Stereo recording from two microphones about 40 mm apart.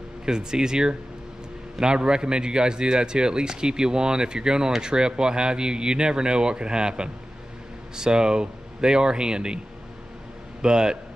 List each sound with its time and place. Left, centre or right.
0.2 s speech: centre
10.6 s speech: centre